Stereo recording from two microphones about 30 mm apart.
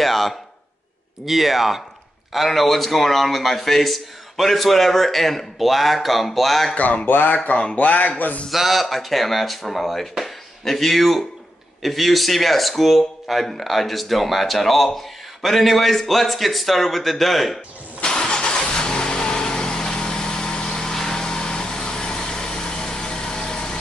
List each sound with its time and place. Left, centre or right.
0.0 s a sound: centre
1.2 s a man's voice: centre
7.1 s speech: left
7.7 s speech: left
8.5 s a man's voice: centre
18.0 s vehicle: left